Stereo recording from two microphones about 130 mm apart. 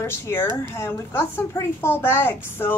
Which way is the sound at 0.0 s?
20° left (ahead or behind).